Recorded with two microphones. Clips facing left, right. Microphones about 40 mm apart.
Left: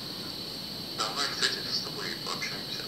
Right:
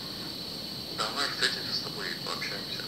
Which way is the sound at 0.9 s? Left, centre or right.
Centre.